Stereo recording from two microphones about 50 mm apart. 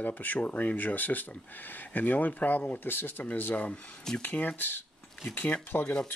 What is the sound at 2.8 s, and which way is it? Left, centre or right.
Speech, left.